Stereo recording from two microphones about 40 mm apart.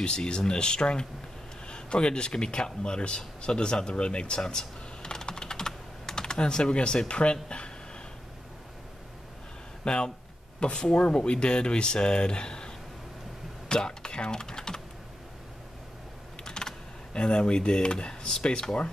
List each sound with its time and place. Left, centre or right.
0.0 s speech: left
9.8 s speech: left
16.4 s speech: centre